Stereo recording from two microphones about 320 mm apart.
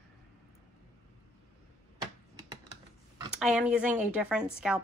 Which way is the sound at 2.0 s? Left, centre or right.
Centre.